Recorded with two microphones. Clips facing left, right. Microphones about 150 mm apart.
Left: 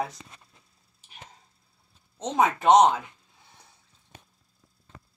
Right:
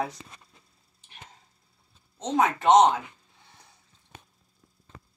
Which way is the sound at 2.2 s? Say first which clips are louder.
Even; 10° left (ahead or behind).